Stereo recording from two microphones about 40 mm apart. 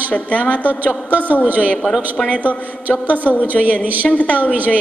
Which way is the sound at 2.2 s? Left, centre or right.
Centre.